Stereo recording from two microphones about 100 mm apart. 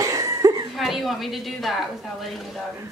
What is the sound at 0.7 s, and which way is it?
A child's voice, centre (ahead or behind).